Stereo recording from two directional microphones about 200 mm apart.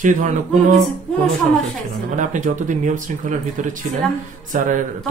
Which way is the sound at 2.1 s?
40° right (ahead or behind).